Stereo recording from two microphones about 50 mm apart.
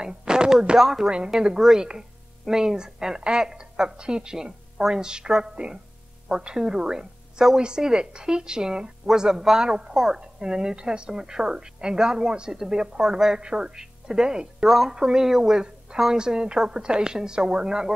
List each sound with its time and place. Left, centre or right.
0.0 s a woman's voice: centre
10.2 s a woman's voice: centre
14.7 s a woman's voice: centre